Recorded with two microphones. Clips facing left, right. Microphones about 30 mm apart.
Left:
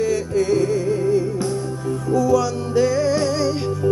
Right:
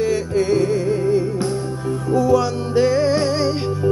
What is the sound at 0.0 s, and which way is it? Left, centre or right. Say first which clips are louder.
Music: right 1 dB; right.